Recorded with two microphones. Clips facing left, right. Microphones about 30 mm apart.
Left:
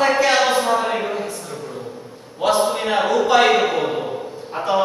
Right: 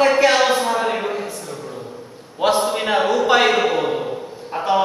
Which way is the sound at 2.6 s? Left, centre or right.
Centre.